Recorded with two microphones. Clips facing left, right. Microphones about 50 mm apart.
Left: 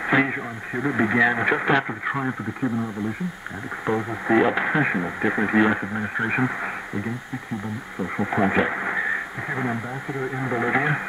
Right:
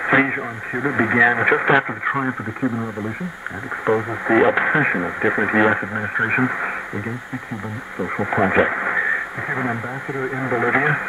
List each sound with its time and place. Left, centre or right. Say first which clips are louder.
0.0 s speech: right 4 dB; centre
3.8 s speech: right 5 dB; centre
8.0 s speech: right 3 dB; centre